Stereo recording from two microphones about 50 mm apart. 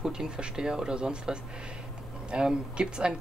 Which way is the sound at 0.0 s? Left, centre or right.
Centre.